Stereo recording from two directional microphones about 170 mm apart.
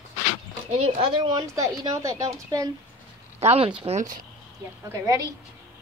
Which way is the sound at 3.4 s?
35° right (ahead or behind).